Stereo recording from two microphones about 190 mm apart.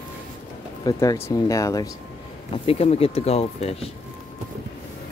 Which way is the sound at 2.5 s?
30° left (ahead or behind).